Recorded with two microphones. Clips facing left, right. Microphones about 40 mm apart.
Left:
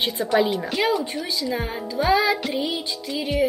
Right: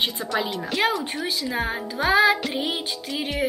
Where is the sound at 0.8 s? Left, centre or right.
Right.